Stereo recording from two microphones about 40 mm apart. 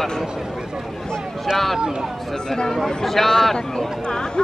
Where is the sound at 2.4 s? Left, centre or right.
Centre.